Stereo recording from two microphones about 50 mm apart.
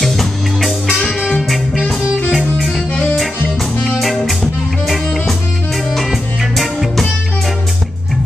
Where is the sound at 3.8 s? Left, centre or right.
Centre.